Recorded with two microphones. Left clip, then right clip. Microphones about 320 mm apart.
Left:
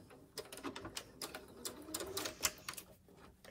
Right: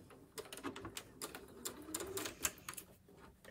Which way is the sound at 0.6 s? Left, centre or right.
Centre.